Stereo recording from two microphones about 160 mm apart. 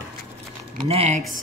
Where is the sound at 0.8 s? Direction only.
40° right (ahead or behind).